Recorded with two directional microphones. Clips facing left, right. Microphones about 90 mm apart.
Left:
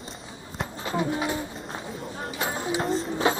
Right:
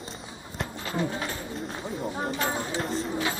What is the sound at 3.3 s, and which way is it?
Music, 20° left (ahead or behind).